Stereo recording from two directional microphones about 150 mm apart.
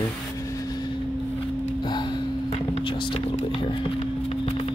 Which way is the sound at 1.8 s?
30° left (ahead or behind).